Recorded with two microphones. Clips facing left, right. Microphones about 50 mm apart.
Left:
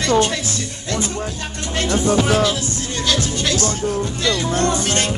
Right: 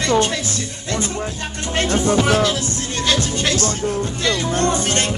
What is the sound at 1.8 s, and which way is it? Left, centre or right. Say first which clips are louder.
Music: even; right.